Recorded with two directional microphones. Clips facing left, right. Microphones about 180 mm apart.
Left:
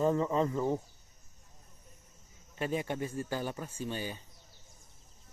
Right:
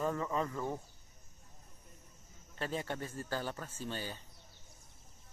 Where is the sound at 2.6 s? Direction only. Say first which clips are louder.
Left 5 dB; 15° left (ahead or behind).